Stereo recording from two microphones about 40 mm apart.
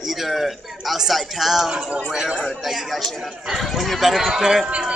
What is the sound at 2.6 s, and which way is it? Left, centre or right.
A man's voice, centre.